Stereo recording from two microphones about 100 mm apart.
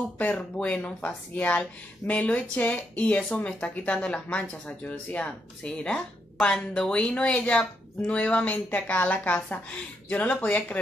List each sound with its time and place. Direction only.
0.2 s speech: 15° left (ahead or behind)